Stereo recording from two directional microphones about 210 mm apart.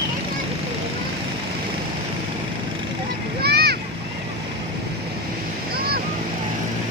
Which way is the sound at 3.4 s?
50° right (ahead or behind).